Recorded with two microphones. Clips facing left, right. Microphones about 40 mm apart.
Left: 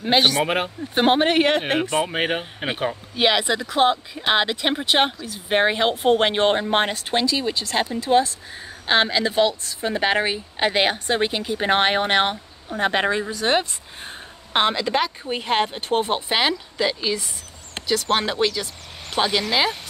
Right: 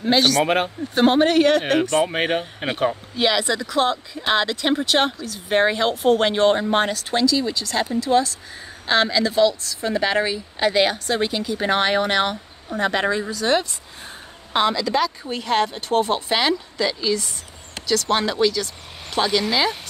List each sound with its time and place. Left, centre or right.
0.0 s a woman's voice: left
1.8 s speech: centre
3.2 s a woman's voice: left
17.8 s a sound: left
18.1 s a woman's voice: left